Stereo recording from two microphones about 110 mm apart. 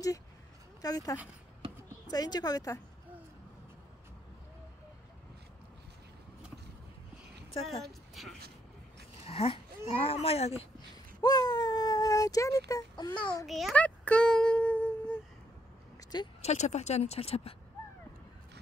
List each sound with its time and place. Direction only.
0.8 s a woman's voice: 35° left (ahead or behind)
7.8 s speech: centre (ahead or behind)
9.2 s speech: 60° left (ahead or behind)
11.1 s baby cry: 35° left (ahead or behind)
12.9 s a child's voice: 45° left (ahead or behind)
13.5 s a child's voice: centre (ahead or behind)
13.7 s a sound: 10° left (ahead or behind)
16.0 s a sound: 40° left (ahead or behind)
16.3 s speech: 85° left; by 17.6 s 65° left (ahead or behind)